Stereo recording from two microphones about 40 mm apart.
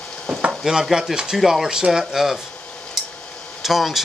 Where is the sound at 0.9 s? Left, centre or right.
Centre.